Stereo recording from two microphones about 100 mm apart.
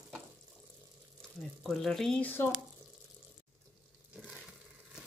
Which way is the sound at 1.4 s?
5° left (ahead or behind).